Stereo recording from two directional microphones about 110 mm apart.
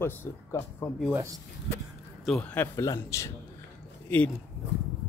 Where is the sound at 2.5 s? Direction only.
15° left (ahead or behind).